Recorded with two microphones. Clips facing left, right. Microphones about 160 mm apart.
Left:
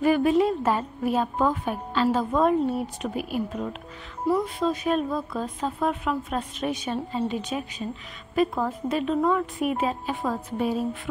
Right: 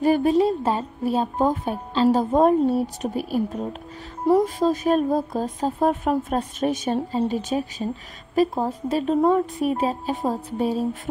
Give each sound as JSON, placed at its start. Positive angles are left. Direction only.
{"t": 0.0, "sound": "speech", "side_deg": -35}